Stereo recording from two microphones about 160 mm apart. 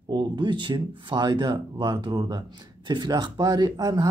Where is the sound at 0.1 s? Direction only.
30° right (ahead or behind).